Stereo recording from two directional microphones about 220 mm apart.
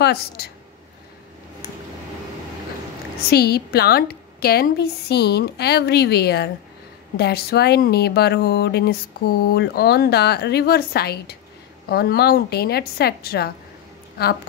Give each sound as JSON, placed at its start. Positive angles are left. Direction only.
{"t": 0.0, "sound": "a woman's voice", "side_deg": 45}
{"t": 3.2, "sound": "speech", "side_deg": 45}